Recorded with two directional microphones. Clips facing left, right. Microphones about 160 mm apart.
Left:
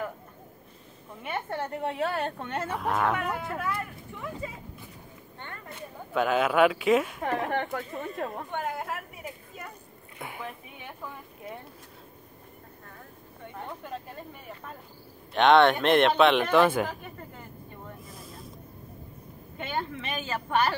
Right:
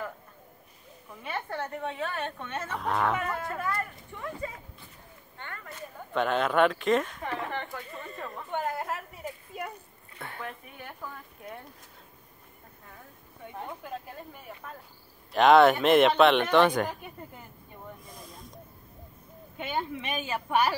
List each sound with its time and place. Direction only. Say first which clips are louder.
1.2 s a woman's voice: left 2 dB; 25° left (ahead or behind)
2.0 s speech: left 4 dB; 35° left (ahead or behind)
2.7 s speech: even; 5° left (ahead or behind)
6.1 s speech: left 2 dB; 5° left (ahead or behind)
7.2 s speech: left 5 dB; 50° left (ahead or behind)
8.5 s a woman's voice: right 1 dB; centre (ahead or behind)
10.1 s a sound: left 1 dB; 10° left (ahead or behind)
13.7 s speech: left 2 dB; 5° right (ahead or behind)
18.0 s a sound: left 2 dB; 5° left (ahead or behind)
19.6 s speech: even; 10° right (ahead or behind)